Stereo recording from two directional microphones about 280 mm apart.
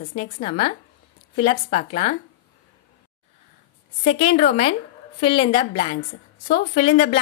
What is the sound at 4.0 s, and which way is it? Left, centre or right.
Speech, left.